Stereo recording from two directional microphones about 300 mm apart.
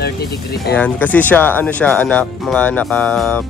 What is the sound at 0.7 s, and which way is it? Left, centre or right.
Speech, centre.